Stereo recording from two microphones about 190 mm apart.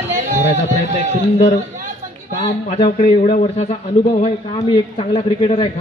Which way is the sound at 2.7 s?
35° left (ahead or behind).